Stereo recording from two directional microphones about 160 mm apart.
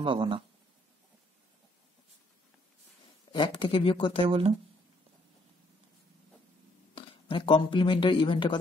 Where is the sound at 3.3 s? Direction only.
30° left (ahead or behind).